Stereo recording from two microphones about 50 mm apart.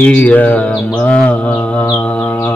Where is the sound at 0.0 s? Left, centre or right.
Left.